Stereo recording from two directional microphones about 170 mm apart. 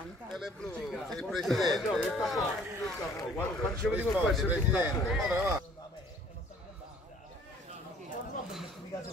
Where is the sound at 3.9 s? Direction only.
10° right (ahead or behind).